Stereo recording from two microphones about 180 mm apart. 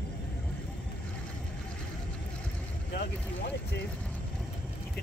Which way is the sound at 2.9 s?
70° left (ahead or behind).